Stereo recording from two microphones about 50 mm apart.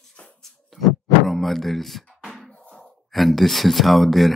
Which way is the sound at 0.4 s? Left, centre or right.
Centre.